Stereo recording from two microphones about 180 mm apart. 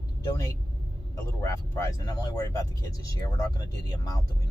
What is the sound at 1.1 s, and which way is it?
Speech, 15° left (ahead or behind).